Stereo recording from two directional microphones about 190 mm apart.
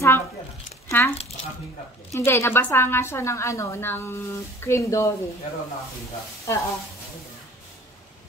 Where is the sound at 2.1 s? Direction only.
15° left (ahead or behind).